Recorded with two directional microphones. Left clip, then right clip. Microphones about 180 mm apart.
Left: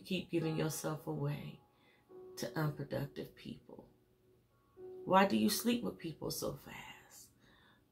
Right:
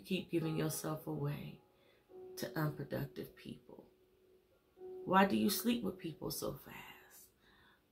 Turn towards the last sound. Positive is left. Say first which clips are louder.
# left 2 dB
turn(degrees=-10)  # may be behind; listen again after turning